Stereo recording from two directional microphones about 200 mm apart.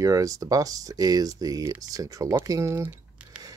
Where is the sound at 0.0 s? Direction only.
15° right (ahead or behind).